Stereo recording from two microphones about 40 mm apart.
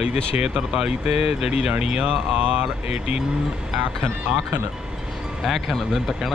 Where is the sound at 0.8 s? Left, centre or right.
Centre.